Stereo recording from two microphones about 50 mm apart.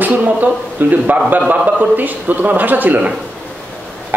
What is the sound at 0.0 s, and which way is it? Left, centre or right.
A man's voice, right.